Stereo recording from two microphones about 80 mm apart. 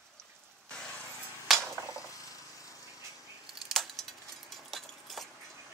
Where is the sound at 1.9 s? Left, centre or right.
Left.